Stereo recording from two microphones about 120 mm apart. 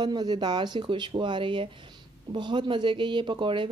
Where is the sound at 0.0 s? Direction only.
35° right (ahead or behind).